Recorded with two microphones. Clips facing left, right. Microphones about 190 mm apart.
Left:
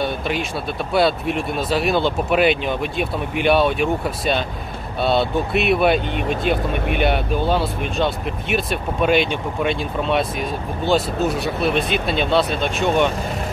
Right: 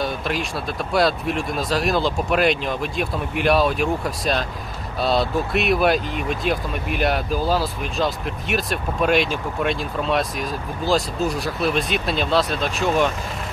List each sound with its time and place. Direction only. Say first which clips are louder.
0.0 s speech: left 2 dB; centre (ahead or behind)